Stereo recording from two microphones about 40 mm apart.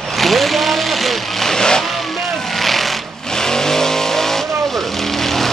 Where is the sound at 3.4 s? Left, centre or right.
Centre.